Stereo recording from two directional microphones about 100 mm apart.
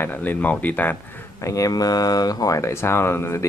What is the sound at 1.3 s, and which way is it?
Speech, 35° left (ahead or behind).